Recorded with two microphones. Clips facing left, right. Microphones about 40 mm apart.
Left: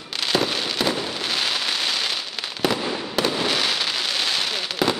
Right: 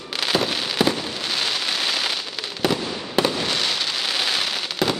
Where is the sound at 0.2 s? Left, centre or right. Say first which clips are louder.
Even; centre.